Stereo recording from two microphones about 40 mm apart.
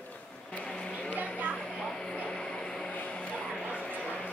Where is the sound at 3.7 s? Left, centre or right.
Left.